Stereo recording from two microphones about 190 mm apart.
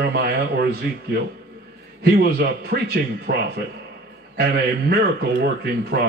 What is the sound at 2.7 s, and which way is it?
Speech, 55° right (ahead or behind).